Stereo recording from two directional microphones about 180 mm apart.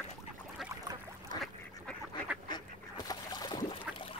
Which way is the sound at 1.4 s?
Centre (ahead or behind).